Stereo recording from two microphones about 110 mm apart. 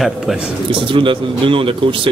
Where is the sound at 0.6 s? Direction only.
50° right (ahead or behind).